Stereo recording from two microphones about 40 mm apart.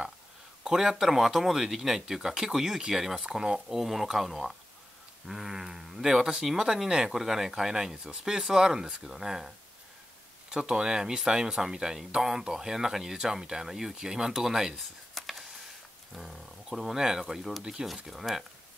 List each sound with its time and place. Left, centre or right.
0.7 s speech: centre
10.5 s speech: centre
14.8 s a sound: centre
16.3 s speech: centre